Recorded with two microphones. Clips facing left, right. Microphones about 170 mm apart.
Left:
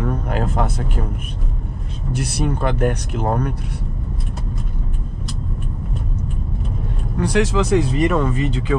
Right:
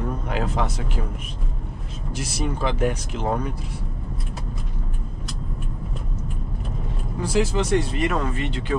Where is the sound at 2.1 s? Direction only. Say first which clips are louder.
Left 5 dB; 60° left (ahead or behind).